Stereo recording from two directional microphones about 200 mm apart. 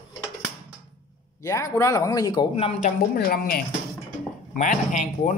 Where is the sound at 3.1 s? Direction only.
50° left (ahead or behind).